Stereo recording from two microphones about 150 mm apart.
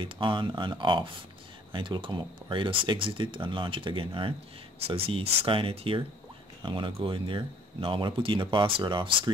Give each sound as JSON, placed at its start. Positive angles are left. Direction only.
{"t": 0.0, "sound": "speech", "side_deg": -35}